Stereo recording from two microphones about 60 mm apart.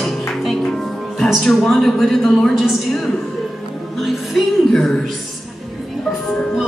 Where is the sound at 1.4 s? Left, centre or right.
Centre.